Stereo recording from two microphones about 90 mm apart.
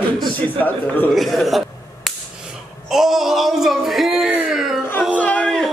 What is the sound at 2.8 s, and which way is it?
Speech, 5° right (ahead or behind).